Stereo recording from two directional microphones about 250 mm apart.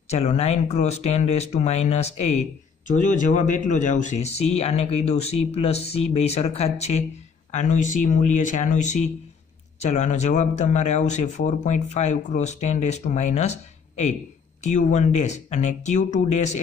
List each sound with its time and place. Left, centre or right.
0.1 s speech: left